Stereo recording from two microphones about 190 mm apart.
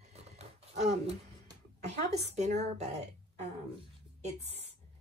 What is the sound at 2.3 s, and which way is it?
Speech, 35° right (ahead or behind).